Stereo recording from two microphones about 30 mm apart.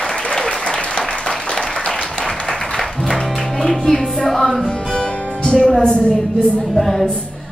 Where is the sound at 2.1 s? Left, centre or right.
Left.